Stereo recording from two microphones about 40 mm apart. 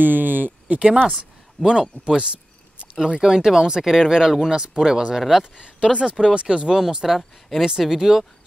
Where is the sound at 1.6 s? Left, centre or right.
Centre.